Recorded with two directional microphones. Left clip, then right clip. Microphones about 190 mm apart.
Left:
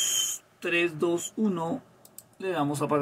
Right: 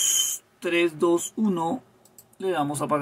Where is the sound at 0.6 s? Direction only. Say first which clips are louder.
Right 4 dB; 20° right (ahead or behind).